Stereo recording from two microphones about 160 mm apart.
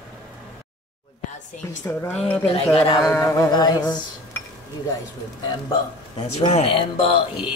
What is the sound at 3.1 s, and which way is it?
Music, 15° left (ahead or behind).